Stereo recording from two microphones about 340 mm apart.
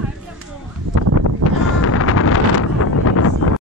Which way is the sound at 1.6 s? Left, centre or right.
Left.